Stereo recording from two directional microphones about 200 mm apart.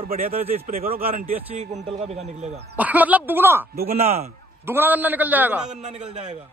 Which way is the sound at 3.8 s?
30° right (ahead or behind).